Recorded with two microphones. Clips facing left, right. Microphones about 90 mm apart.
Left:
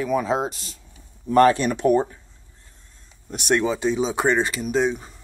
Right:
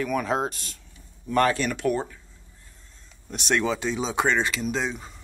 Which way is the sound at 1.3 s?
25° left (ahead or behind).